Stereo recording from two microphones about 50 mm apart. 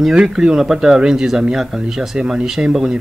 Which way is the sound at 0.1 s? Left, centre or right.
Centre.